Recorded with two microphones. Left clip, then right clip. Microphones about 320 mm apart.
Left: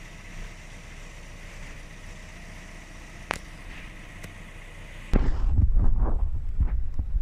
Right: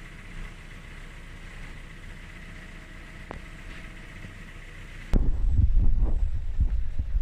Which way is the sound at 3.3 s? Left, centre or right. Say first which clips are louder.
Left 11 dB; left.